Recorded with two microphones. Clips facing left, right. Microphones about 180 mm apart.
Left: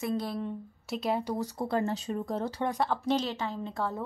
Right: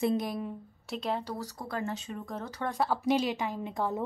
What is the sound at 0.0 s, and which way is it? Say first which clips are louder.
Speech: right 3 dB; 20° right (ahead or behind).